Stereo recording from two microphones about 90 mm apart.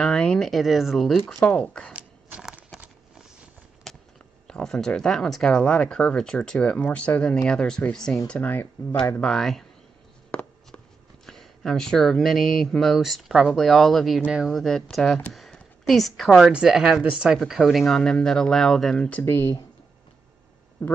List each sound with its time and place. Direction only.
0.0 s speech: 10° left (ahead or behind)
2.0 s a sound: 15° right (ahead or behind)
3.9 s a sound: centre (ahead or behind)
4.5 s speech: 5° left (ahead or behind)
8.3 s speech: 20° left (ahead or behind)
9.2 s speech: 5° left (ahead or behind)
11.2 s speech: 5° left (ahead or behind)
14.2 s speech: 10° right (ahead or behind)
14.5 s speech: centre (ahead or behind)
15.3 s a sound: centre (ahead or behind)
16.3 s speech: 5° right (ahead or behind)
19.2 s speech: 30° left (ahead or behind)
20.8 s speech: 20° left (ahead or behind)